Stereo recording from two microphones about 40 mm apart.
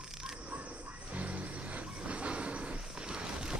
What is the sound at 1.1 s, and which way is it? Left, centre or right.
Vehicle, right.